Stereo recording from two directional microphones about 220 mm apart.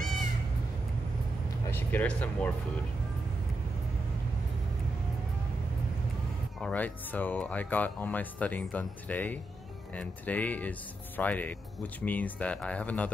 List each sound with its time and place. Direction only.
1.7 s speech: 10° left (ahead or behind)
6.6 s speech: 5° left (ahead or behind)